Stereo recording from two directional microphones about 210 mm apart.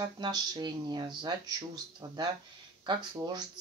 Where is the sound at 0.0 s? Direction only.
20° right (ahead or behind).